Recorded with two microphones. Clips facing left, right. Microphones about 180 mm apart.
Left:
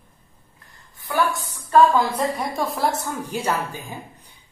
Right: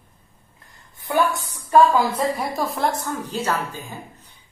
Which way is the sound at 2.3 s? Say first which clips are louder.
Even; centre (ahead or behind).